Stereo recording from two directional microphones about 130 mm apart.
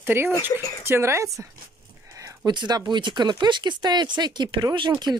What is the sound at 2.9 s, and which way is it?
Speech, 35° right (ahead or behind).